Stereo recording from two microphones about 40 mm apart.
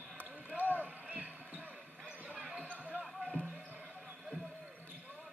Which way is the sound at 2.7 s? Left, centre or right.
Right.